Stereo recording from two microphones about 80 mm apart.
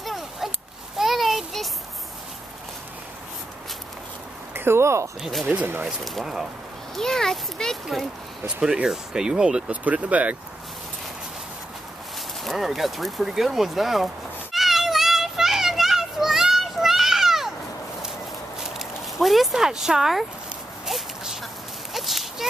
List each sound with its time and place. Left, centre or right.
0.0 s a sound: centre
4.6 s speech: right
5.2 s a child's voice: centre
5.5 s speech: right
6.0 s a child's voice: centre
8.5 s speech: centre
12.4 s a sound: centre
18.7 s speech: centre
20.8 s a sound: centre